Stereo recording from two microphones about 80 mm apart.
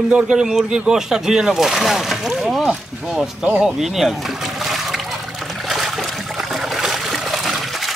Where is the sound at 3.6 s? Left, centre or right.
Centre.